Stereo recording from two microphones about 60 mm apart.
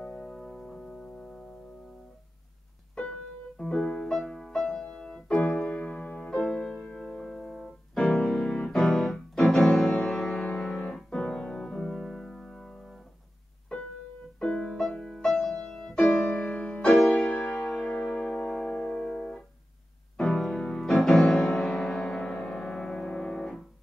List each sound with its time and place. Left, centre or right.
0.0 s music: centre
3.0 s music: centre
7.1 s music: centre
8.1 s music: centre
9.1 s music: centre
10.4 s piano: centre
11.0 s music: centre
13.7 s keyboard: centre
14.4 s piano: centre
16.3 s music: left
16.8 s music: centre
17.3 s music: left